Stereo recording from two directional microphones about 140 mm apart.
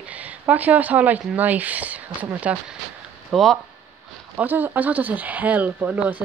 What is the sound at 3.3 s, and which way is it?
Speech, centre (ahead or behind).